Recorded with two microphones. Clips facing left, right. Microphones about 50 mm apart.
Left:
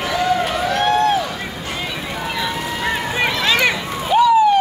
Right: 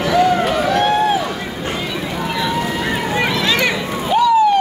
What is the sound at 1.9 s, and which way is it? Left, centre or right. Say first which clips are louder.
Vehicle: right 3 dB; centre.